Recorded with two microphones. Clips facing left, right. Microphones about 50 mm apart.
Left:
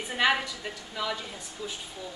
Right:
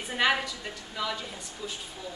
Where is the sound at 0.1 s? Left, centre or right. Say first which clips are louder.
Even; centre.